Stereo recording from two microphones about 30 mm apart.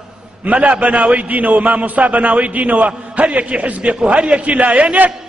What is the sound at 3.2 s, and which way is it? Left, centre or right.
Speech, right.